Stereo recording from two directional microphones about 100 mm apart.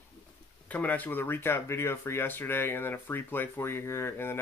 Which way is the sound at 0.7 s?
15° left (ahead or behind).